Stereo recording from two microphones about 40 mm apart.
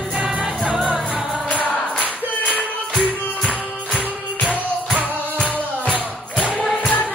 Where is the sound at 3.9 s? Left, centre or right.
Left.